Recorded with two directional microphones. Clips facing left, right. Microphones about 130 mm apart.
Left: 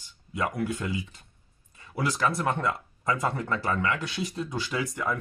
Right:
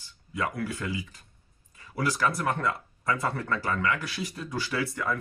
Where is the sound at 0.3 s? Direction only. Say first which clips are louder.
Left 2 dB; 20° left (ahead or behind).